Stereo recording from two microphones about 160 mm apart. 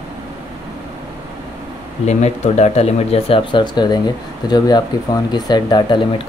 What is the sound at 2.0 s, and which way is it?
Speech, 45° left (ahead or behind).